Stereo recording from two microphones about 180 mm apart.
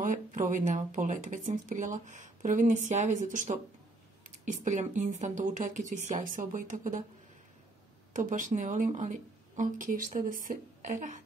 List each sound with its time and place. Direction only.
0.0 s speech: 45° right (ahead or behind)
8.1 s speech: 45° right (ahead or behind)